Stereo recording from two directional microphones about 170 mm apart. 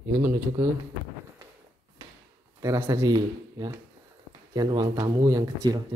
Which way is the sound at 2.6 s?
20° right (ahead or behind).